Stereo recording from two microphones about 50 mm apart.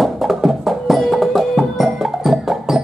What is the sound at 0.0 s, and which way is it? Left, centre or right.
Music, centre.